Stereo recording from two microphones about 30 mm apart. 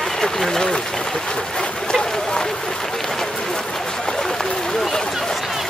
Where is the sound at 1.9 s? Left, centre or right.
Left.